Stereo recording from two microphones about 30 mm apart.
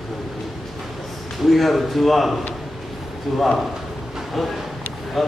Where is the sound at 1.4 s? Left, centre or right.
Centre.